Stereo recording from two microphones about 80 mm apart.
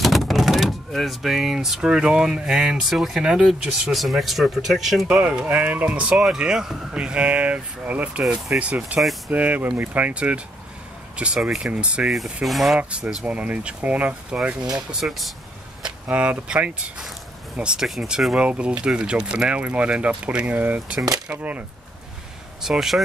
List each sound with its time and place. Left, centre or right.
0.0 s speech: centre
8.2 s speech: centre
8.5 s speech: centre
12.4 s speech: centre
12.9 s speech: centre
15.8 s speech: centre
22.6 s speech: centre